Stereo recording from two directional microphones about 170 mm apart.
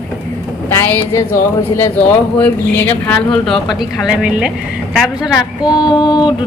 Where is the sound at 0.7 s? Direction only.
15° left (ahead or behind).